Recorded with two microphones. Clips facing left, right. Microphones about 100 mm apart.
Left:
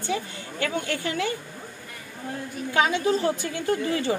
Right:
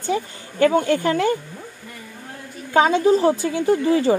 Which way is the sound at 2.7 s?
35° right (ahead or behind).